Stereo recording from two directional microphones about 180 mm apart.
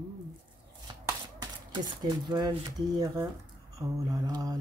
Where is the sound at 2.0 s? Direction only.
25° right (ahead or behind).